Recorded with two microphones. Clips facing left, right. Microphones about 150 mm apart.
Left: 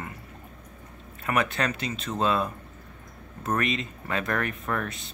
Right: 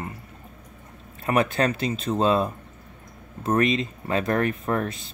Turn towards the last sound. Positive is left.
turn(degrees=-30)  # may be behind; listen again after turning